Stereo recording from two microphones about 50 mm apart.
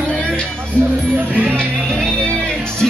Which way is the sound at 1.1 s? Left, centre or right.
Right.